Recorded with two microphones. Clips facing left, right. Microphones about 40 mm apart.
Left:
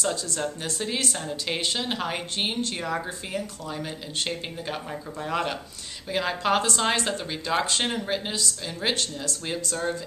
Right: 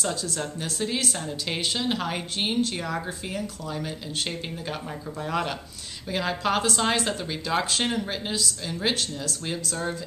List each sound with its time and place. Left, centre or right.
0.0 s speech: centre